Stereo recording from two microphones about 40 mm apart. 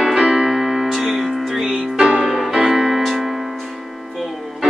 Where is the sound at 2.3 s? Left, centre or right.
Centre.